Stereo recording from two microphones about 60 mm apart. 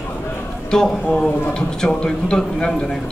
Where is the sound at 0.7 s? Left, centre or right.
Centre.